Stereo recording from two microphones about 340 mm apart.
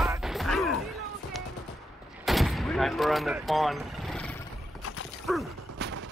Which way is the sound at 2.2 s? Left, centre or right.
Centre.